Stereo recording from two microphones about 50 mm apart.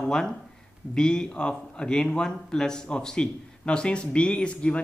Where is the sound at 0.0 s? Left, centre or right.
Centre.